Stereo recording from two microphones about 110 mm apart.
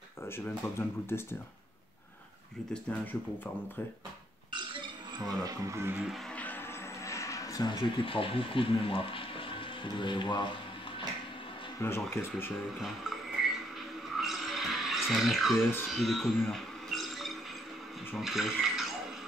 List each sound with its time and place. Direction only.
0.7 s speech: 20° left (ahead or behind)
2.7 s speech: 15° left (ahead or behind)
5.2 s speech: 30° right (ahead or behind)
6.3 s music: 15° left (ahead or behind)
7.1 s speech: 30° left (ahead or behind); by 10.5 s 45° left (ahead or behind)
11.8 s speech: 25° left (ahead or behind)
14.1 s music: centre (ahead or behind)
18.1 s speech: centre (ahead or behind)